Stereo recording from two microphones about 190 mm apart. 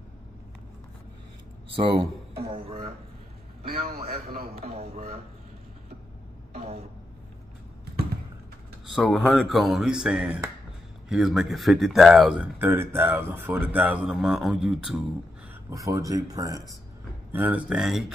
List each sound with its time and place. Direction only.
2.3 s speech: 55° right (ahead or behind)
2.6 s a man's voice: 35° right (ahead or behind)
3.6 s a man's voice: 50° right (ahead or behind)
4.6 s a man's voice: 35° right (ahead or behind)
8.9 s a man's voice: centre (ahead or behind)
15.7 s a man's voice: 15° right (ahead or behind)